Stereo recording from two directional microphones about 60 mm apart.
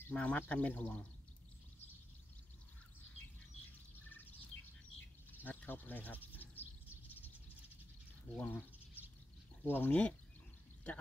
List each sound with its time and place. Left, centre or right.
0.1 s speech: left
5.3 s speech: left
6.3 s a sound: left
8.4 s speech: left
8.7 s a sound: right
9.6 s speech: left